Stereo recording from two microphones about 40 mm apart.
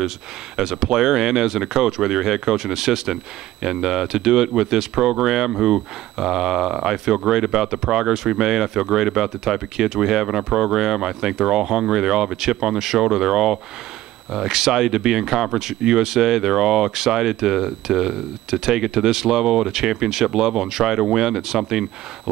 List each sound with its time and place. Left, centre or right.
0.6 s speech: centre